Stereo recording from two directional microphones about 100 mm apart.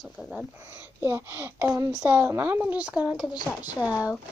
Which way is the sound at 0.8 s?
25° right (ahead or behind).